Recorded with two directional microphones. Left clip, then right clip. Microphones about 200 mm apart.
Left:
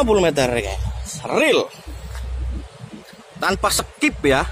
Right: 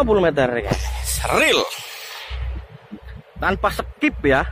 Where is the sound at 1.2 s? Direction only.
5° left (ahead or behind).